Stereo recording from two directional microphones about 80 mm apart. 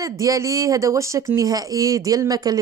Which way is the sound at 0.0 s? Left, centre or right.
Right.